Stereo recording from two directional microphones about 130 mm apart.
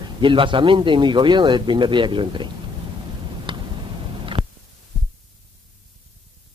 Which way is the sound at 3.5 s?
40° right (ahead or behind).